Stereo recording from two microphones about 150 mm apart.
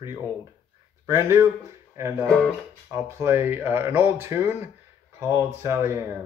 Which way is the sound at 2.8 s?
20° right (ahead or behind).